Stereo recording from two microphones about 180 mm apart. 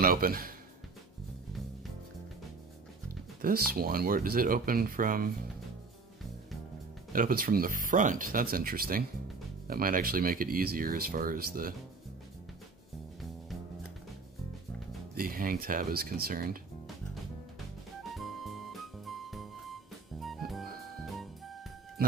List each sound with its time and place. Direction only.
0.0 s speech: 55° right (ahead or behind)
3.4 s speech: 55° right (ahead or behind)
7.1 s speech: 55° right (ahead or behind)
15.1 s speech: 55° right (ahead or behind)
18.1 s music: centre (ahead or behind)